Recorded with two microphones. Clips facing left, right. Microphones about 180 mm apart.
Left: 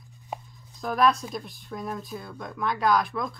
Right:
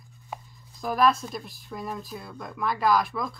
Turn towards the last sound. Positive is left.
turn(degrees=0)  # may be behind; listen again after turning